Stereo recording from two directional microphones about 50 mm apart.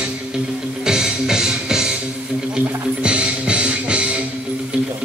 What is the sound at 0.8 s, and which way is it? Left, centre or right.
Music, centre.